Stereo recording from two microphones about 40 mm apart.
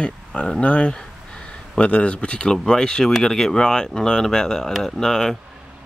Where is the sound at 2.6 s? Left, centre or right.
Centre.